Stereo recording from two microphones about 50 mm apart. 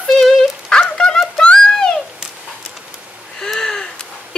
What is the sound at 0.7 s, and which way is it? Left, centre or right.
Dog, centre.